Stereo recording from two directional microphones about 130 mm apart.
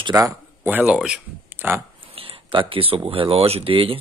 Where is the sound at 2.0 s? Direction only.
45° right (ahead or behind).